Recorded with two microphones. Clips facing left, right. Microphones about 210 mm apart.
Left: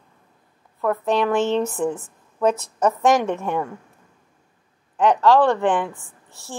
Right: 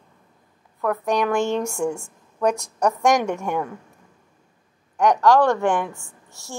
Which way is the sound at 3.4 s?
10° right (ahead or behind).